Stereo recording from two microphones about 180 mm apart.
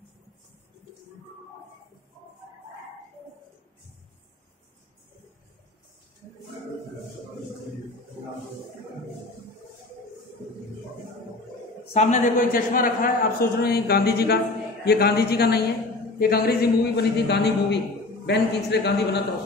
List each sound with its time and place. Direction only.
11.9 s a man's voice: 40° left (ahead or behind); by 19.2 s 70° left (ahead or behind)